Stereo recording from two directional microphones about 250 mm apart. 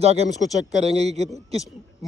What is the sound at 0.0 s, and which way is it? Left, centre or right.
A man's voice, right.